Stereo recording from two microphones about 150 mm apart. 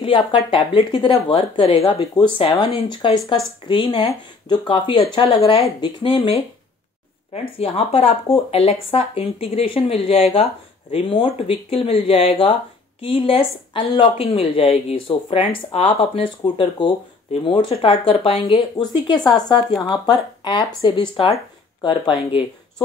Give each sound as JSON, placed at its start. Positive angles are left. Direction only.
{"t": 0.0, "sound": "speech", "side_deg": 35}
{"t": 7.5, "sound": "speech", "side_deg": 40}